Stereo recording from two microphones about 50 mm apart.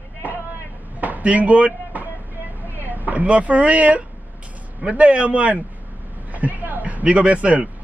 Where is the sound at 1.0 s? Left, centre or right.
Right.